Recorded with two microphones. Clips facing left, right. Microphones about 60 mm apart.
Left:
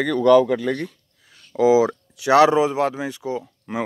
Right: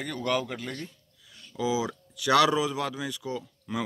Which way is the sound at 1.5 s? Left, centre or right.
Left.